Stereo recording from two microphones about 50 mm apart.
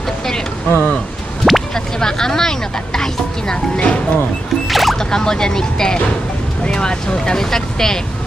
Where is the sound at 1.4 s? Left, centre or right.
Centre.